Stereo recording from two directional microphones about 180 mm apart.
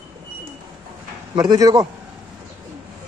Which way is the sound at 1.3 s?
25° right (ahead or behind).